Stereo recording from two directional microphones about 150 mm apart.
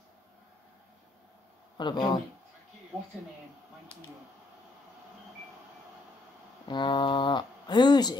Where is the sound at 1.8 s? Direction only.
30° left (ahead or behind).